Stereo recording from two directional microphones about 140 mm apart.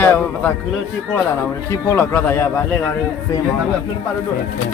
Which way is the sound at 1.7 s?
15° left (ahead or behind).